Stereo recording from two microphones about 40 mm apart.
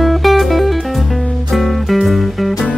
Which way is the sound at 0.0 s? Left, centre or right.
Centre.